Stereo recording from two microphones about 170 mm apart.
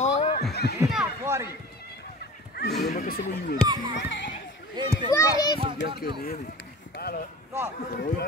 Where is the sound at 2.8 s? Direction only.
65° left (ahead or behind).